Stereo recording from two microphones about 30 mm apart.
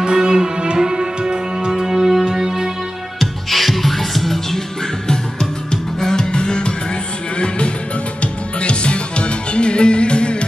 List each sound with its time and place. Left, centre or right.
0.0 s music: right
3.2 s music: centre
5.0 s music: left